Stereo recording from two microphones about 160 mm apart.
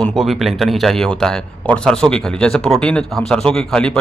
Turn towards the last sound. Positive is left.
turn(degrees=5)  # may be behind; listen again after turning